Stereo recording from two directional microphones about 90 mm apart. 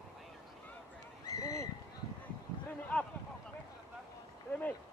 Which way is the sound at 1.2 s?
40° left (ahead or behind).